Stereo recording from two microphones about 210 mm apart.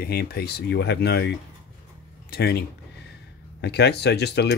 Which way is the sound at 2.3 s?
50° left (ahead or behind).